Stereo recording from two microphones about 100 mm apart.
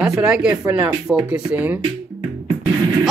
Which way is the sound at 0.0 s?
10° right (ahead or behind).